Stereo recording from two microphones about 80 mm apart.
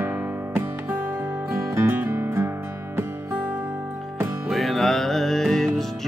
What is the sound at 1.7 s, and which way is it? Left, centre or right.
Music, right.